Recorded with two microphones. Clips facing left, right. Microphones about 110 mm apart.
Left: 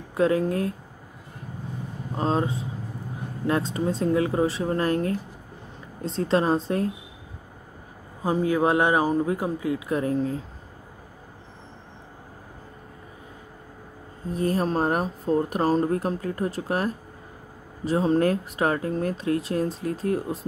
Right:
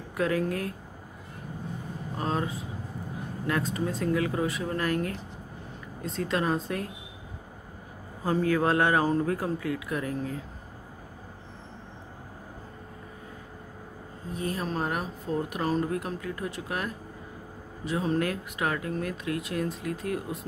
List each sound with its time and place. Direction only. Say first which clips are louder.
0.1 s a man's voice: left 5 dB; 25° left (ahead or behind)
2.1 s a man's voice: left 6 dB; 30° left (ahead or behind)
8.2 s a man's voice: left 3 dB; 15° left (ahead or behind)
14.3 s speech: left 7 dB; 40° left (ahead or behind)